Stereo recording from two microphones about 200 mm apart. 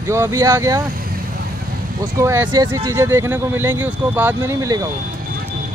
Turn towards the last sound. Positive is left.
turn(degrees=-15)  # may be behind; listen again after turning